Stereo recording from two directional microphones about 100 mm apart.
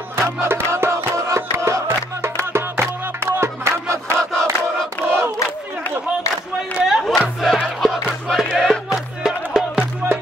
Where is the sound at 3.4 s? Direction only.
30° right (ahead or behind).